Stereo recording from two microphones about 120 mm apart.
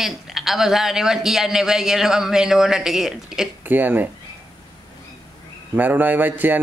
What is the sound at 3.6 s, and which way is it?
Speech, 15° right (ahead or behind).